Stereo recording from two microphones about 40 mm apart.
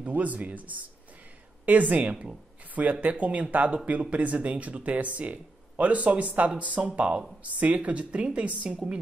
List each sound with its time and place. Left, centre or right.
0.1 s speech: right
7.4 s speech: right